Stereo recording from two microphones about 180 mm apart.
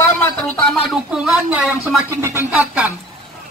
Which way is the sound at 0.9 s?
Centre (ahead or behind).